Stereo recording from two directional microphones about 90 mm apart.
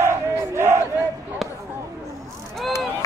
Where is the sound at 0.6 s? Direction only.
30° right (ahead or behind).